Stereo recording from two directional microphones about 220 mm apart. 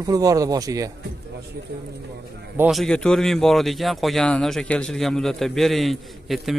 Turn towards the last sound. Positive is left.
turn(degrees=0)  # may be behind; listen again after turning